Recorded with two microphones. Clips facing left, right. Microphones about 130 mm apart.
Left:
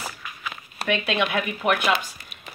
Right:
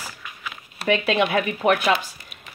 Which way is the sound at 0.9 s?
35° right (ahead or behind).